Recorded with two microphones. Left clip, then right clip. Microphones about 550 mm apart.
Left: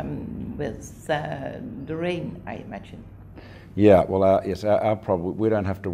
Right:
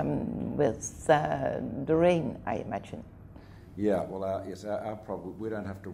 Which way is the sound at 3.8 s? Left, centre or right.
Left.